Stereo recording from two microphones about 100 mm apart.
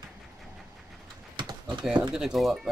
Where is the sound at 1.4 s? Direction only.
50° right (ahead or behind).